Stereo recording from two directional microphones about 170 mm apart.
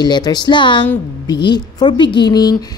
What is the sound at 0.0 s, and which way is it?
A woman's voice, 25° left (ahead or behind).